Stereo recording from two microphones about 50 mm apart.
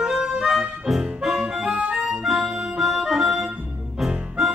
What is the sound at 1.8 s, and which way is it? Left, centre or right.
Music, right.